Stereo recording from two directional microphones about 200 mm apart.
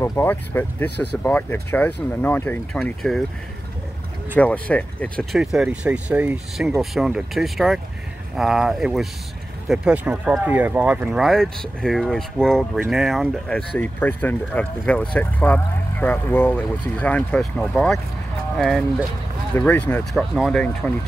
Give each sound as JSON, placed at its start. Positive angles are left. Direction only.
{"t": 0.0, "sound": "speech", "side_deg": 10}
{"t": 0.8, "sound": "speech", "side_deg": 55}
{"t": 1.2, "sound": "speech", "side_deg": 10}
{"t": 4.4, "sound": "speech", "side_deg": 5}